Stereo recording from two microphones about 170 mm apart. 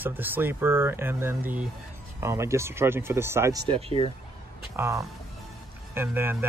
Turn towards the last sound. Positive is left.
turn(degrees=-10)  # may be behind; listen again after turning